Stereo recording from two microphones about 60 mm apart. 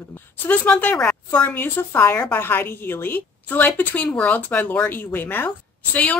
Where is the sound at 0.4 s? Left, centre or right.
Left.